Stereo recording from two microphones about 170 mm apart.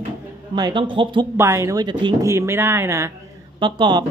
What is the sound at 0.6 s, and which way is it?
Speech, 25° right (ahead or behind).